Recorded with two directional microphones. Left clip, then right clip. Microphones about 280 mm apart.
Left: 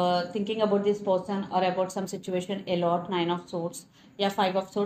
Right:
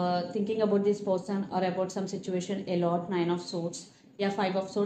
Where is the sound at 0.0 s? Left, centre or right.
Left.